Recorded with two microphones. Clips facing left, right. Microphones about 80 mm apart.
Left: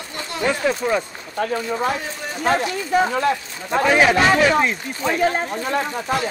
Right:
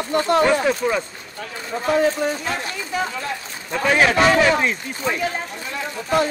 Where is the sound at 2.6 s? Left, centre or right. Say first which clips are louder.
Left 6 dB; left.